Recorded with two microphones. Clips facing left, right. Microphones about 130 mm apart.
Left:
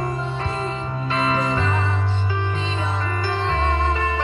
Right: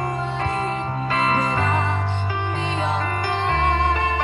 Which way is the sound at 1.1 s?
45° right (ahead or behind).